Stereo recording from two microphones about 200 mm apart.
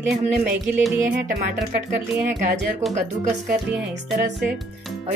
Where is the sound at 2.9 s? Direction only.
35° right (ahead or behind).